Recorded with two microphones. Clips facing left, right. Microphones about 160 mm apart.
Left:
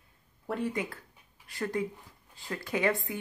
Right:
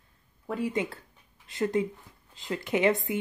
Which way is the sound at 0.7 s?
25° right (ahead or behind).